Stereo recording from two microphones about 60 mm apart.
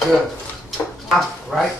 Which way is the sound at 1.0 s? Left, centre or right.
Centre.